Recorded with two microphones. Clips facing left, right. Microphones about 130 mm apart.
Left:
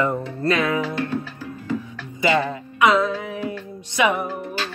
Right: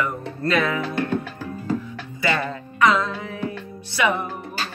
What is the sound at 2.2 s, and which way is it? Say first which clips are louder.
Music: left 4 dB; 20° left (ahead or behind).